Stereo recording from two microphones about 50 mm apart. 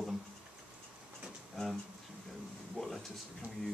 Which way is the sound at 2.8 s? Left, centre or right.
Centre.